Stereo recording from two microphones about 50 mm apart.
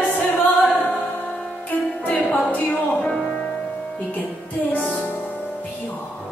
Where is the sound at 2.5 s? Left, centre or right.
Left.